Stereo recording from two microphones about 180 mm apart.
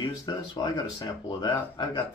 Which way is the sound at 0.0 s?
20° left (ahead or behind).